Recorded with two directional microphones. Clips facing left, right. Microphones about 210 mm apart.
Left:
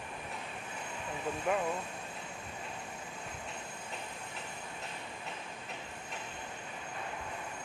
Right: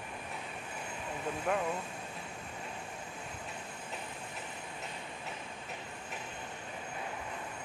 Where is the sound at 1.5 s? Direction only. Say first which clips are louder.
Left 1 dB; centre (ahead or behind).